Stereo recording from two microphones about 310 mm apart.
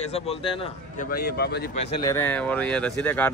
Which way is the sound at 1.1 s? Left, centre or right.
Left.